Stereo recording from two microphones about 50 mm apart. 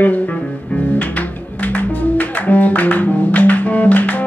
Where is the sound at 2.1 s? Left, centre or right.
Left.